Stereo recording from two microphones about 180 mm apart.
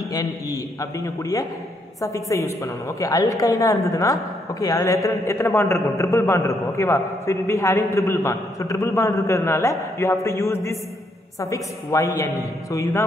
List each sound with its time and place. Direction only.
0.1 s a man's voice: 20° left (ahead or behind)